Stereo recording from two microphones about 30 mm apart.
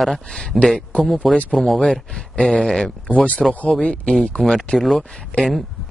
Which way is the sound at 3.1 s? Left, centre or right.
Left.